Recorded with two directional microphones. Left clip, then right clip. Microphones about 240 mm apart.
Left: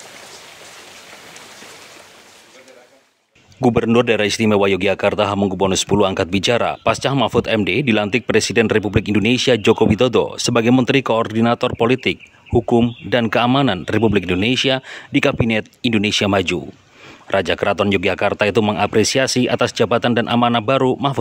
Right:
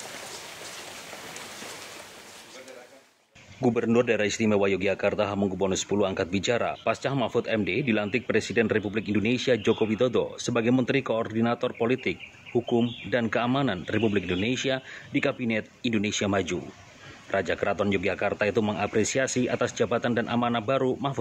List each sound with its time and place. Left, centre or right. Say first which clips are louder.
3.6 s speech: left 9 dB; left